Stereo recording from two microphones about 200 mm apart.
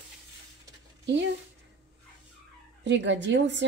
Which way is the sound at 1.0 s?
60° right (ahead or behind).